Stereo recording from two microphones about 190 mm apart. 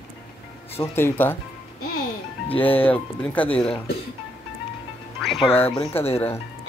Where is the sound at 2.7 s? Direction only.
10° left (ahead or behind).